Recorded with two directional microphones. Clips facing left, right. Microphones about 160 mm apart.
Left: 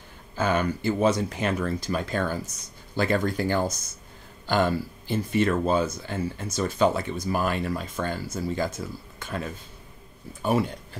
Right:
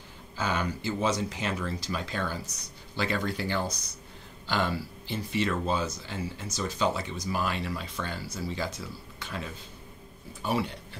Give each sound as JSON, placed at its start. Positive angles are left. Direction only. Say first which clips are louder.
{"t": 0.4, "sound": "speech", "louder": "left 6 dB", "side_deg": 55}